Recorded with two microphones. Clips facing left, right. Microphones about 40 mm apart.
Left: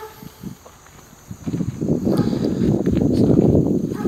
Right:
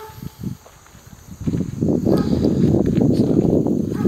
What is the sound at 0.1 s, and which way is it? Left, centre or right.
Insect, centre.